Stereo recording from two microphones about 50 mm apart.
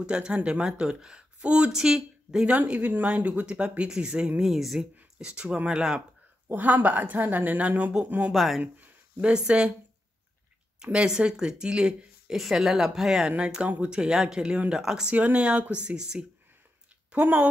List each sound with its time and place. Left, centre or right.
0.0 s speech: centre
1.7 s speech: centre
2.6 s speech: right; by 4.3 s centre
4.4 s speech: centre
5.2 s speech: centre
6.5 s speech: right
8.3 s speech: centre
8.8 s a sound: right
9.3 s speech: centre
10.8 s speech: centre
13.4 s speech: right
15.1 s speech: right
17.1 s speech: right